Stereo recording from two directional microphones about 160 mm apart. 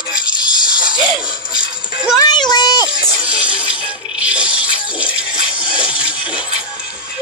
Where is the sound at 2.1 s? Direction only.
25° left (ahead or behind).